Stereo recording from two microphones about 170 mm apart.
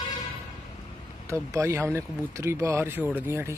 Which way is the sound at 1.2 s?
15° right (ahead or behind).